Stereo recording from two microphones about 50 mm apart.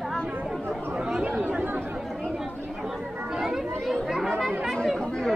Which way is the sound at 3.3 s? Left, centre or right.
Centre.